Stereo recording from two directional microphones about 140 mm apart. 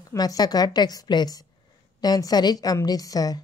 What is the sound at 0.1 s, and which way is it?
A woman's voice, 25° left (ahead or behind).